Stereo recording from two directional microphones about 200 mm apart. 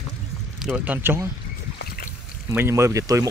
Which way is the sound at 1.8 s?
50° left (ahead or behind).